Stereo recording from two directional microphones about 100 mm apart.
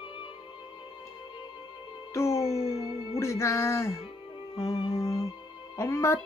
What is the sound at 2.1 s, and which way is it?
Music, 30° left (ahead or behind).